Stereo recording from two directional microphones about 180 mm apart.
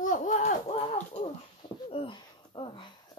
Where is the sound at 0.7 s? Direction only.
30° left (ahead or behind).